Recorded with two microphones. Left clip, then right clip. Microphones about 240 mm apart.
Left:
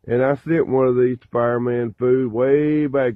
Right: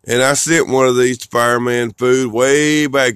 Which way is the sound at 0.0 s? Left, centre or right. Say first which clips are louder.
Right 5 dB; centre.